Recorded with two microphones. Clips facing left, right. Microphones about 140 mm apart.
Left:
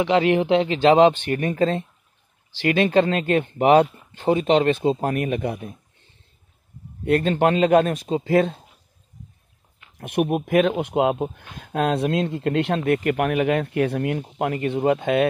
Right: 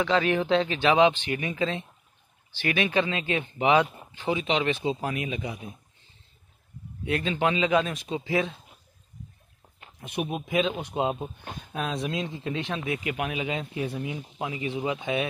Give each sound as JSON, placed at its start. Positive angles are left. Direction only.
{"t": 0.0, "sound": "speech", "side_deg": 20}
{"t": 0.7, "sound": "speech", "side_deg": 35}
{"t": 1.1, "sound": "speech", "side_deg": 50}
{"t": 2.6, "sound": "speech", "side_deg": 35}
{"t": 3.2, "sound": "speech", "side_deg": 55}
{"t": 7.2, "sound": "speech", "side_deg": 55}
{"t": 9.9, "sound": "speech", "side_deg": 60}